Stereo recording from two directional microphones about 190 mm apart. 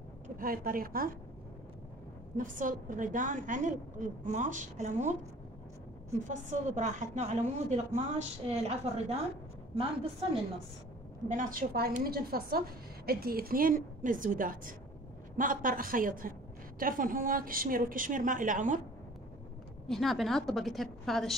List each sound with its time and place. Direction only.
0.4 s a woman's voice: 50° right (ahead or behind)
2.3 s a woman's voice: 45° right (ahead or behind)
6.2 s a woman's voice: 40° right (ahead or behind)
11.2 s a woman's voice: 45° right (ahead or behind)
19.9 s a woman's voice: centre (ahead or behind)